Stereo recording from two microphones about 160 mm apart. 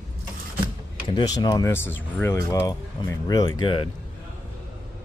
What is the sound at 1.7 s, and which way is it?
Speech, 15° left (ahead or behind).